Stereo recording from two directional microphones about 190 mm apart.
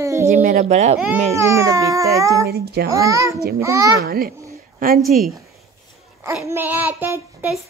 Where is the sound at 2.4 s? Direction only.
55° right (ahead or behind).